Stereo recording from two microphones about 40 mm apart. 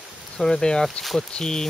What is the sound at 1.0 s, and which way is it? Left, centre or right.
Speech, centre.